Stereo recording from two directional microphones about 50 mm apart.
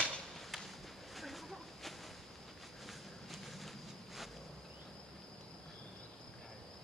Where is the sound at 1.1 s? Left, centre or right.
Centre.